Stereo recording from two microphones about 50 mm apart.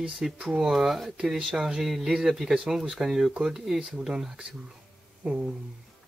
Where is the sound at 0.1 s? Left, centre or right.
Centre.